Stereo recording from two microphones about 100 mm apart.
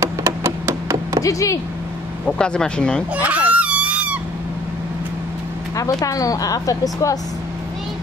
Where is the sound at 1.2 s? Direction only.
35° left (ahead or behind).